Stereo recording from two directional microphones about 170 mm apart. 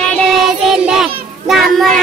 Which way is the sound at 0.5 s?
Centre (ahead or behind).